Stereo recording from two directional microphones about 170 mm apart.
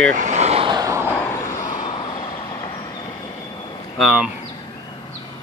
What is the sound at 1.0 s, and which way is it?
Vehicle, 15° left (ahead or behind).